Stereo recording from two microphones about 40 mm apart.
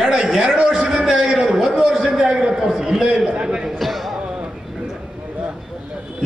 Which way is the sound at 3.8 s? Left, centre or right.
Centre.